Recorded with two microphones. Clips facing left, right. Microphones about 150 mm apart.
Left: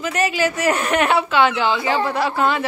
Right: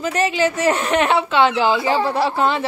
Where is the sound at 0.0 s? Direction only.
30° right (ahead or behind).